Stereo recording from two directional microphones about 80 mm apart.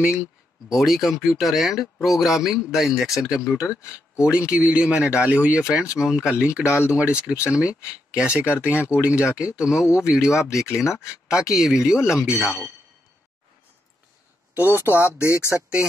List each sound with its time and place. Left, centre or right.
0.7 s speech: centre
14.5 s speech: right